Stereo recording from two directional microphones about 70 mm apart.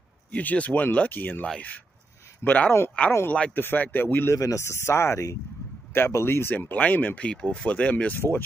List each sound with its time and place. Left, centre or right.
0.3 s speech: left
3.5 s speech: left
4.4 s speech: left
6.7 s speech: centre